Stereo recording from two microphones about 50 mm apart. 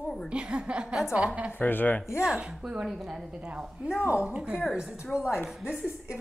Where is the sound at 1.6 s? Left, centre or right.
Left.